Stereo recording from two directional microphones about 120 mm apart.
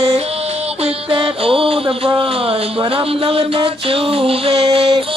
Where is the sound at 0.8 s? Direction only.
50° right (ahead or behind).